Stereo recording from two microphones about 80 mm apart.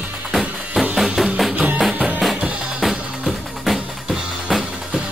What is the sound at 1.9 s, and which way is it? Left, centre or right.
Music, centre.